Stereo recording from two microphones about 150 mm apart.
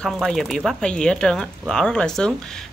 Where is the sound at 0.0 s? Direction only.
Centre (ahead or behind).